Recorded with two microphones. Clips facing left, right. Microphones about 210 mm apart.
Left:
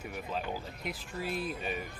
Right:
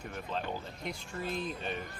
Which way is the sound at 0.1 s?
5° left (ahead or behind).